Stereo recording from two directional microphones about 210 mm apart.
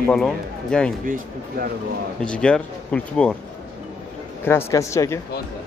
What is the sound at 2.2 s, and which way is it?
Speech, 5° left (ahead or behind).